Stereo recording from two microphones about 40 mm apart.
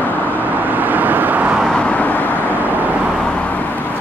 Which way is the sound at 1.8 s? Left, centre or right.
Left.